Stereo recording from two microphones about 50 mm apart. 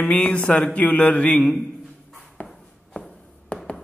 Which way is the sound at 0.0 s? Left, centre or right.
Left.